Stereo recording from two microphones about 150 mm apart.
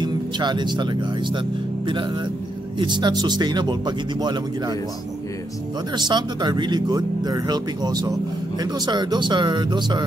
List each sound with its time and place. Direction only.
0.0 s speech: 30° right (ahead or behind)
2.8 s speech: 30° right (ahead or behind)
5.9 s speech: 30° right (ahead or behind)